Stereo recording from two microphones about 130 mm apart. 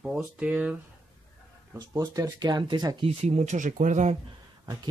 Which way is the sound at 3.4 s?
70° right (ahead or behind).